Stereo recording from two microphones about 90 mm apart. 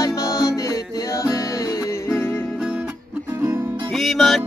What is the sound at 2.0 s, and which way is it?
Music, 30° left (ahead or behind).